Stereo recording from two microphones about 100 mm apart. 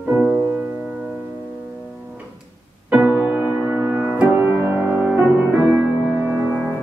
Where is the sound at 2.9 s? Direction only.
15° right (ahead or behind).